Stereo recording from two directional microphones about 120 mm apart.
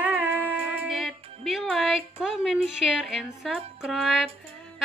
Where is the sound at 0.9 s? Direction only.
Centre (ahead or behind).